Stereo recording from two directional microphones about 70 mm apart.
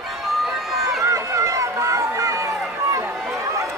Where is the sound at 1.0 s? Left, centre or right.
Right.